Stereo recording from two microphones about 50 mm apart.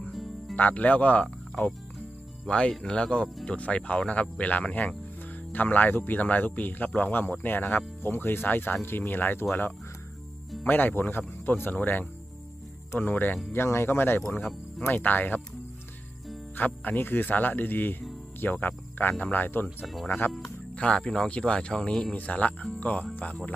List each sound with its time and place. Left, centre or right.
0.1 s music: centre
0.6 s speech: left
2.4 s speech: centre; by 9.5 s left
10.6 s speech: left
11.7 s speech: left
13.5 s speech: left
14.3 s speech: left
16.5 s speech: left
20.7 s speech: centre
22.1 s speech: left